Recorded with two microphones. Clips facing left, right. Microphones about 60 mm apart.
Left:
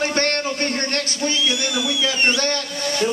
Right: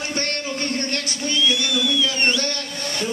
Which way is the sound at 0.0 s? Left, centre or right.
Left.